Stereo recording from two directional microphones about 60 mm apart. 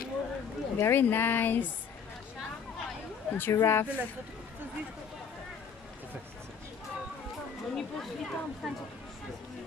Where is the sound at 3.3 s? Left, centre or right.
Left.